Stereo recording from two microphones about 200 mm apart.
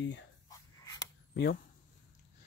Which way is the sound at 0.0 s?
65° left (ahead or behind).